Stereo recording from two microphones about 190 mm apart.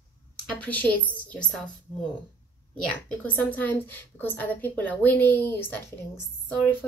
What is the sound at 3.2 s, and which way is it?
A woman's voice, 10° left (ahead or behind).